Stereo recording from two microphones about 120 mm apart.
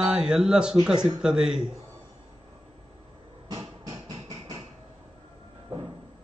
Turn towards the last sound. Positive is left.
turn(degrees=-40)  # may be behind; listen again after turning